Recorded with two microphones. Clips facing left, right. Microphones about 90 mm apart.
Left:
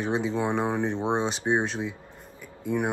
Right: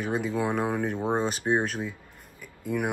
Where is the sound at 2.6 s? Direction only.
25° left (ahead or behind).